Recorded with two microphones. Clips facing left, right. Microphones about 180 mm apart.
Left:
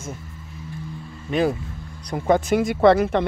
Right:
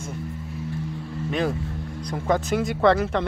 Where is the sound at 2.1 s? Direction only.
15° left (ahead or behind).